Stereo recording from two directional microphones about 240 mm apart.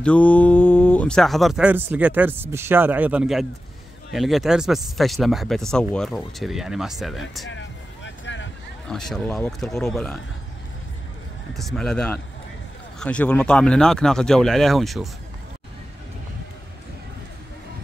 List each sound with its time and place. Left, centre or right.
0.0 s speech: centre
7.4 s vehicle: left
8.8 s speech: centre
11.5 s speech: centre